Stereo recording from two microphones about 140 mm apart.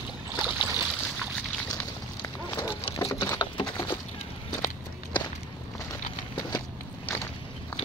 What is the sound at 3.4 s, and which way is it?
Patter, 35° left (ahead or behind).